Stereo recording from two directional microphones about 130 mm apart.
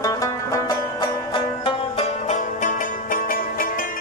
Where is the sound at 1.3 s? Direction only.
40° left (ahead or behind).